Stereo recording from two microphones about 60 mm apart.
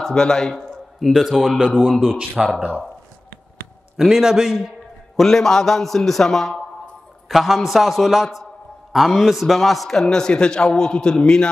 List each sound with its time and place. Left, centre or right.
0.0 s a man's voice: centre
0.9 s a man's voice: centre
3.9 s a man's voice: centre
5.1 s a man's voice: centre